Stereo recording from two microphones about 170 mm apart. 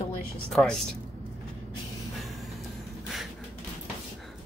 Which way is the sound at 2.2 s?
Centre (ahead or behind).